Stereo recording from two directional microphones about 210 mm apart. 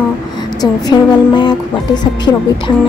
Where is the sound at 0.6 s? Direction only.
20° left (ahead or behind).